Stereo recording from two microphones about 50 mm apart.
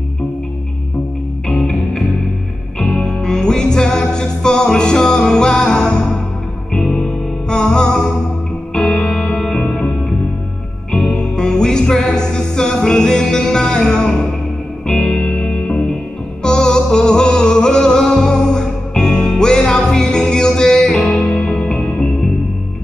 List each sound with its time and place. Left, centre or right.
1.5 s music: centre
9.4 s music: centre